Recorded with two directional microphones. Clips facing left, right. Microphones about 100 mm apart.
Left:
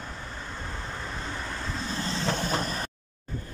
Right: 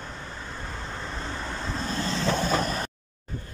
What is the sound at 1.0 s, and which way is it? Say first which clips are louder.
Vehicle: right 1 dB; centre (ahead or behind).